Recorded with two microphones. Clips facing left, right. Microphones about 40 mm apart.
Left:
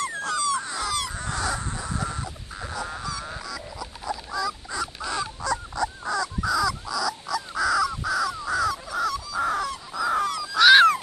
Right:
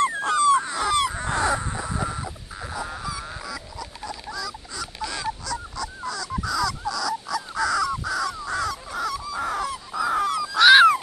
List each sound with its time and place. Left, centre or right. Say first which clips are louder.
0.1 s a sound: right 7 dB; right
0.7 s dog: right 4 dB; centre
0.9 s crow: right 6 dB; right; by 3.5 s centre
4.0 s dog: left 5 dB; centre
5.4 s honk: left 4 dB; left
6.4 s crow: right 1 dB; centre
9.4 s dog: left 3 dB; centre